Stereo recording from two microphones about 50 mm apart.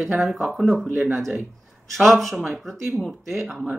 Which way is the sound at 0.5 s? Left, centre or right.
Centre.